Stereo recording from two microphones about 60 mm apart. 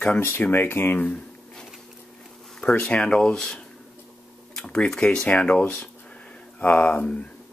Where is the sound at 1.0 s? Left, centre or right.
Centre.